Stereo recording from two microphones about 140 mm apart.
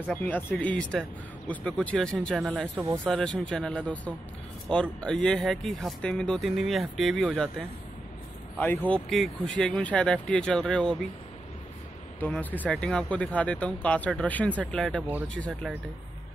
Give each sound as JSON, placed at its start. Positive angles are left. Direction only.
{"t": 0.1, "sound": "speech", "side_deg": 15}
{"t": 8.5, "sound": "speech", "side_deg": 10}
{"t": 12.2, "sound": "speech", "side_deg": 10}